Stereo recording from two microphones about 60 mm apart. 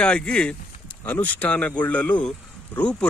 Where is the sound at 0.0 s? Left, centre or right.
Centre.